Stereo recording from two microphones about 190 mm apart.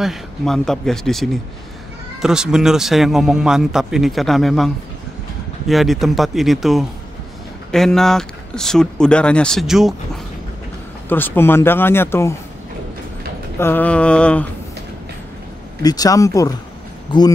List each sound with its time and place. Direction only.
0.0 s a man's voice: centre (ahead or behind)
5.7 s a man's voice: centre (ahead or behind)
11.1 s speech: 10° left (ahead or behind)
13.6 s speech: 10° left (ahead or behind)
15.8 s speech: 20° left (ahead or behind)